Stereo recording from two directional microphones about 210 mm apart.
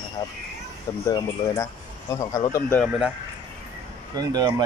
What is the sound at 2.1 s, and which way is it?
Speech, 15° left (ahead or behind).